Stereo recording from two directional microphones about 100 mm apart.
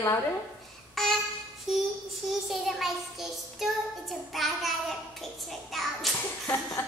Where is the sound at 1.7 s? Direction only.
5° right (ahead or behind).